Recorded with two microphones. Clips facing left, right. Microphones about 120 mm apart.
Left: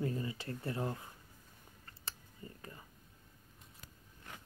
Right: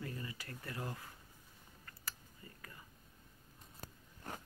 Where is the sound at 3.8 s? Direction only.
40° right (ahead or behind).